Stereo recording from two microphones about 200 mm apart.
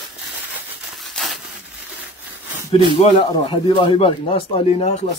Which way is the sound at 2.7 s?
25° left (ahead or behind).